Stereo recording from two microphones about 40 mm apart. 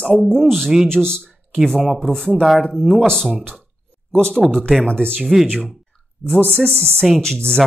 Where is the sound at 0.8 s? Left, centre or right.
Centre.